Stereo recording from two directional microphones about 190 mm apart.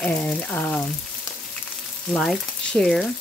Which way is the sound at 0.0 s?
5° left (ahead or behind).